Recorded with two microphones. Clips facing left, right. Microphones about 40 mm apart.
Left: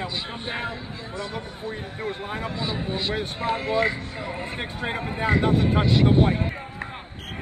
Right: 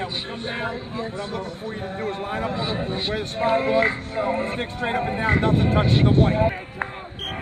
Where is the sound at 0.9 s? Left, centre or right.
Right.